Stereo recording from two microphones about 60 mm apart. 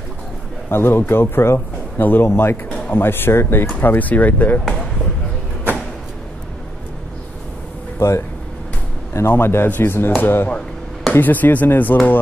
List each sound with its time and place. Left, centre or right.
0.7 s speech: left
2.0 s speech: left
3.8 s speech: left
8.0 s speech: left
9.3 s speech: left